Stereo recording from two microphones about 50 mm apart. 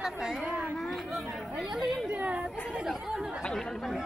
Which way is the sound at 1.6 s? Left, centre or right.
Centre.